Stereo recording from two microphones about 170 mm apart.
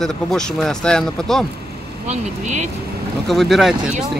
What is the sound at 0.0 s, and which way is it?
Speech, 5° left (ahead or behind).